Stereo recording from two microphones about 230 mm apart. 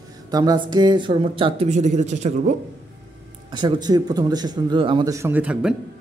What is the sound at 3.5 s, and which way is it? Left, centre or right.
Speech, centre.